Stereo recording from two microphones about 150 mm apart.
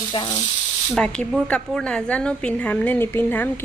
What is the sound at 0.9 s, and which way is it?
A woman's voice, 5° left (ahead or behind).